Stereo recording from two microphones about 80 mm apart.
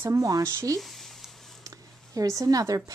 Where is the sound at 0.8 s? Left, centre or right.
Centre.